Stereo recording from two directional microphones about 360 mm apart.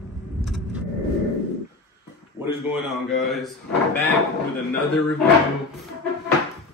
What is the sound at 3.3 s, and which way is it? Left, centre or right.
Drawer open or close, centre.